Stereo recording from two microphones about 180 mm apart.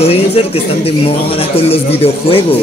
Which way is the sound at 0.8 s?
35° left (ahead or behind).